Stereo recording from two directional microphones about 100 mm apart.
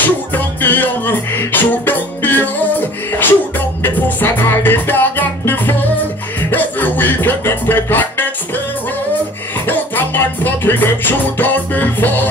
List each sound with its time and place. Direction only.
0.0 s music: 20° left (ahead or behind)
9.7 s music: 20° left (ahead or behind)